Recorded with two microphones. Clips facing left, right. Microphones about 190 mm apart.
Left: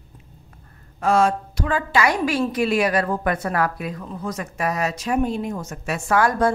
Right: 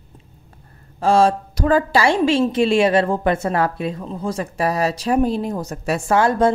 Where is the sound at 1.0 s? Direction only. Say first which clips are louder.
Right 3 dB; 30° right (ahead or behind).